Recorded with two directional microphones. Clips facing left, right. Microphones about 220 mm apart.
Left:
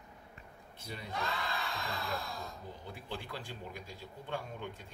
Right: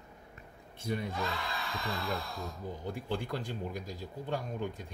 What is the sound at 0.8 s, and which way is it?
Speech, 50° right (ahead or behind).